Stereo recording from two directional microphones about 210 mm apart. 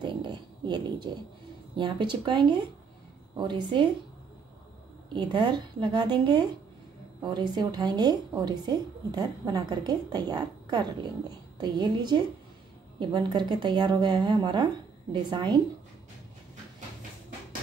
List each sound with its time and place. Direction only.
0.0 s a woman's voice: 20° right (ahead or behind)
5.1 s a woman's voice: 20° right (ahead or behind)